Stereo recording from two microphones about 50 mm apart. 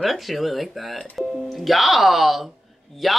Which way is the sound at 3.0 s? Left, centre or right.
Centre.